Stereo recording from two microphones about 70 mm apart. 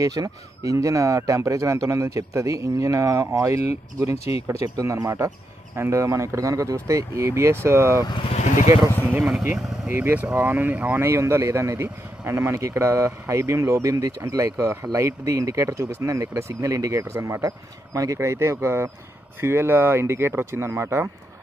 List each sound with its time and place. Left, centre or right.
0.0 s speech: right
9.0 s speech: right
11.0 s speech: right